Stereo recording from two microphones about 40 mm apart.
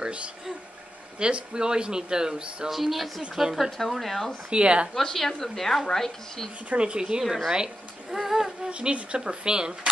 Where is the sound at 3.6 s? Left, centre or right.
Centre.